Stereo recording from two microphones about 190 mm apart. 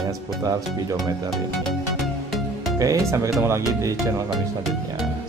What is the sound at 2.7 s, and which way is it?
Speech, 15° right (ahead or behind).